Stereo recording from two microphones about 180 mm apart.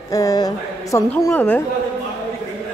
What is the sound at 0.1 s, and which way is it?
A man's voice, 20° left (ahead or behind).